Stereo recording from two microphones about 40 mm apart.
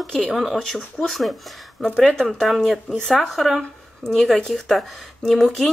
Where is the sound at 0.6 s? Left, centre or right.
Centre.